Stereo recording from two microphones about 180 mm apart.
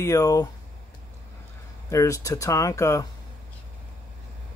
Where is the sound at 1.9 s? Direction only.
15° left (ahead or behind).